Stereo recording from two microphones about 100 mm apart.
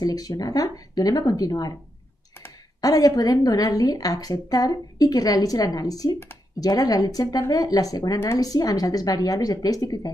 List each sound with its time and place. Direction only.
0.0 s a woman's voice: 40° left (ahead or behind)
2.8 s a woman's voice: 40° left (ahead or behind)